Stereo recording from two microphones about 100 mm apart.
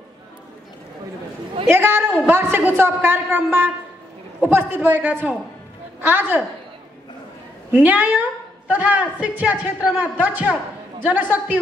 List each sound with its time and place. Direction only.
1.7 s a woman's voice: 25° right (ahead or behind)
7.7 s a woman's voice: 15° right (ahead or behind)